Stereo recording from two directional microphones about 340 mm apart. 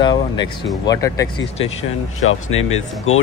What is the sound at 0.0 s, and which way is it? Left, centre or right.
Speech, centre.